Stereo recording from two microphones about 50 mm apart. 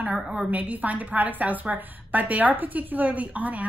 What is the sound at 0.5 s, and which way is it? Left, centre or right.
A woman's voice, right.